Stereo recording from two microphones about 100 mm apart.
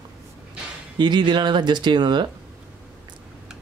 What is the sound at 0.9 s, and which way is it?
Speech, 50° right (ahead or behind).